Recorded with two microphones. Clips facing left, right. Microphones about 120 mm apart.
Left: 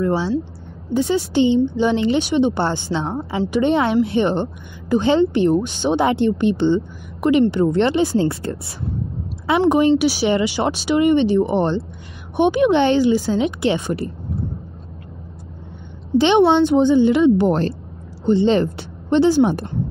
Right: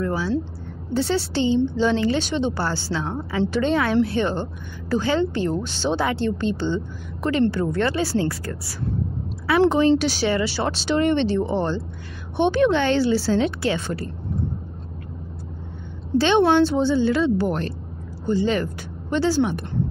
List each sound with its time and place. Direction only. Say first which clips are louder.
0.0 s speech: left 5 dB; 25° left (ahead or behind)
0.9 s a woman's voice: left 5 dB; 15° left (ahead or behind)
9.9 s speech: left 4 dB; 10° left (ahead or behind)
16.2 s a woman's voice: left 3 dB; 20° left (ahead or behind)
17.5 s speech: left 7 dB; 30° left (ahead or behind)